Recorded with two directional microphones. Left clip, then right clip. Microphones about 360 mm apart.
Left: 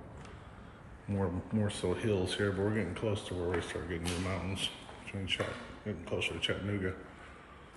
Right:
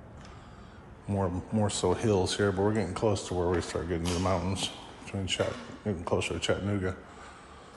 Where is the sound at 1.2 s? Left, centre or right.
Centre.